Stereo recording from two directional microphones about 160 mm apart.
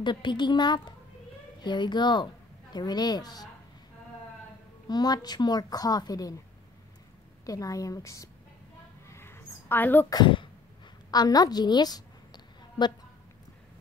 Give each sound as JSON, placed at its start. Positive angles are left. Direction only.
{"t": 0.0, "sound": "a woman's voice", "side_deg": 30}
{"t": 4.8, "sound": "a woman's voice", "side_deg": 25}
{"t": 7.4, "sound": "a woman's voice", "side_deg": 20}
{"t": 9.0, "sound": "a sound", "side_deg": 15}
{"t": 10.1, "sound": "speech", "side_deg": 30}
{"t": 11.1, "sound": "a sound", "side_deg": 25}